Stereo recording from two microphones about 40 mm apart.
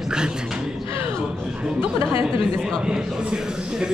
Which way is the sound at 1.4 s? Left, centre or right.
Centre.